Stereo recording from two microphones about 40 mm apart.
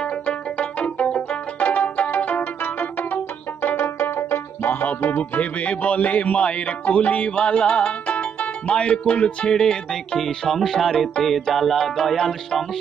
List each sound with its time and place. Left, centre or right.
0.3 s music: left
1.7 s music: left
4.0 s music: left
4.8 s music: left
7.2 s music: left
9.1 s speech: left